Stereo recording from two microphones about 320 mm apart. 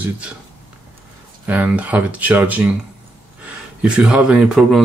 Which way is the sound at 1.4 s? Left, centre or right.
Centre.